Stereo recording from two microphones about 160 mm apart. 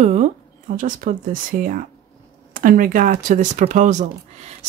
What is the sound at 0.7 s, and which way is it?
Speech, 55° right (ahead or behind).